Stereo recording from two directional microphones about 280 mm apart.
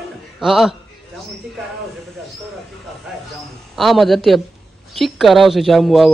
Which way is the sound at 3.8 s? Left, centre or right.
Centre.